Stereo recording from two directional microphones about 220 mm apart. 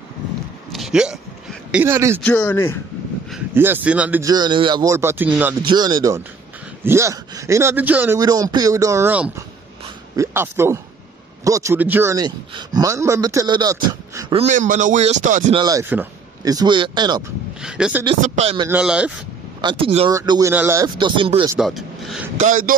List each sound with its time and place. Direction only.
0.7 s hiccup: centre (ahead or behind)
1.7 s speech: 10° right (ahead or behind)
2.2 s a man's voice: 10° left (ahead or behind)
3.3 s speech: 5° right (ahead or behind)
5.6 s a man's voice: 20° right (ahead or behind)
15.5 s a man's voice: 15° right (ahead or behind)
17.6 s speech: 5° right (ahead or behind)
18.2 s a man's voice: 30° right (ahead or behind)
18.7 s speech: 5° right (ahead or behind)
19.6 s a man's voice: 20° right (ahead or behind)
20.2 s speech: 15° right (ahead or behind)
21.5 s speech: centre (ahead or behind)
22.4 s speech: 35° right (ahead or behind)